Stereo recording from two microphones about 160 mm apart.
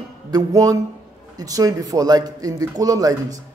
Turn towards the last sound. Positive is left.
turn(degrees=-20)  # may be behind; listen again after turning